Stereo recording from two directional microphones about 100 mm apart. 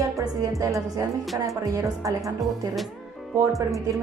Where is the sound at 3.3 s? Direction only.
30° right (ahead or behind).